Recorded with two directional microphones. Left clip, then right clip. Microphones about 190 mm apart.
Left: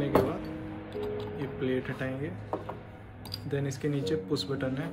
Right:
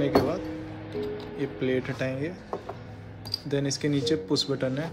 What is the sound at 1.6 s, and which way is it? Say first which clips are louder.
Speech: right 4 dB; 30° right (ahead or behind).